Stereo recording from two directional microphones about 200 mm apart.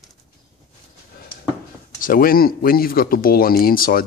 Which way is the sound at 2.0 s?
45° left (ahead or behind).